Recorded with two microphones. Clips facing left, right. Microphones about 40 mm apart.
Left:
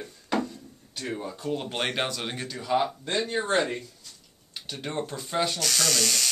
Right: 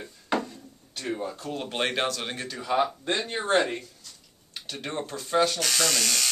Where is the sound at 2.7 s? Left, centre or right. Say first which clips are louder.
Even; centre.